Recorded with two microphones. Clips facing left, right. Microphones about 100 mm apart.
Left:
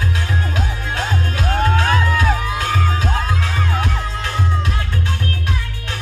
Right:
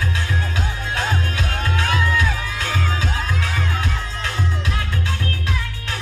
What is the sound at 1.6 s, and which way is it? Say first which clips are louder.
Music: left 3 dB; 40° left (ahead or behind).